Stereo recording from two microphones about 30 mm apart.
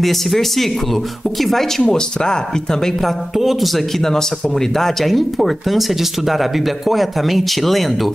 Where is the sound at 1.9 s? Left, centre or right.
Left.